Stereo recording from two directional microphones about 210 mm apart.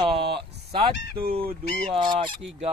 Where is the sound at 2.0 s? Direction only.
40° right (ahead or behind).